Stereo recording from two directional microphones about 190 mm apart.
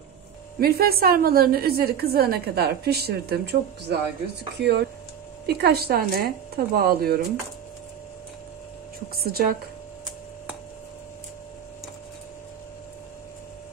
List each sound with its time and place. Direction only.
0.6 s a woman's voice: 55° right (ahead or behind)
9.1 s a woman's voice: 55° right (ahead or behind)